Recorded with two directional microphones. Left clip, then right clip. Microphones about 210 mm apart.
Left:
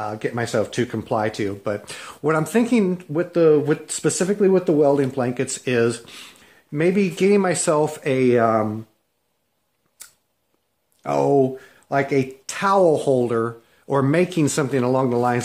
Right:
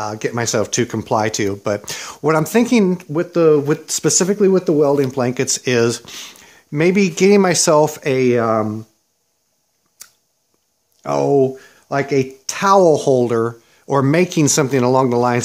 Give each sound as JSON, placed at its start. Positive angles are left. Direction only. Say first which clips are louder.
{"t": 0.0, "sound": "speech", "louder": "right 4 dB", "side_deg": -40}
{"t": 10.0, "sound": "a sound", "louder": "right 3 dB", "side_deg": -40}
{"t": 11.0, "sound": "speech", "louder": "right 3 dB", "side_deg": -40}